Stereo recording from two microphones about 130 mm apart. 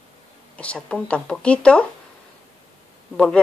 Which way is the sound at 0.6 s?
10° left (ahead or behind).